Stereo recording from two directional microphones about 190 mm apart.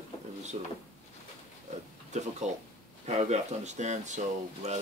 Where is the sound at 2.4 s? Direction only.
40° right (ahead or behind).